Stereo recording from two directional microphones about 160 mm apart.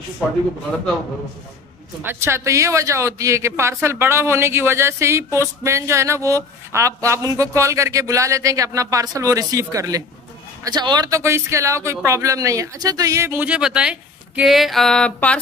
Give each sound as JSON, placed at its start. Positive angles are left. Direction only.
{"t": 2.0, "sound": "speech", "side_deg": -15}